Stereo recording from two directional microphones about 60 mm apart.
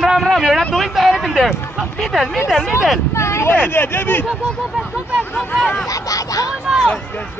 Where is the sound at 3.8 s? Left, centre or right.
Left.